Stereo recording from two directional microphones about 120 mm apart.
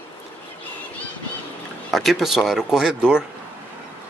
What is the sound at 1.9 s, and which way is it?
Speech, centre (ahead or behind).